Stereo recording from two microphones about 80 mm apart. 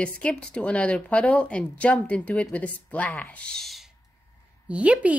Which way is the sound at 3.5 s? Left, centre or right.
Centre.